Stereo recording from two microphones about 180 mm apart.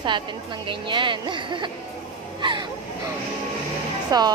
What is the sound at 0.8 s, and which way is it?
Speech, 25° right (ahead or behind).